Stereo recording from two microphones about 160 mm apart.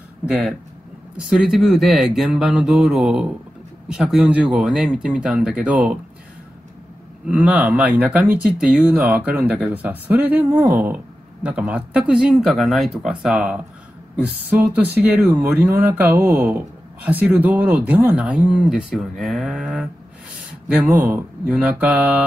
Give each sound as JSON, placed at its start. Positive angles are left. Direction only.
{"t": 0.3, "sound": "speech", "side_deg": 0}
{"t": 7.2, "sound": "speech", "side_deg": -10}
{"t": 15.0, "sound": "speech", "side_deg": -10}
{"t": 21.1, "sound": "speech", "side_deg": -10}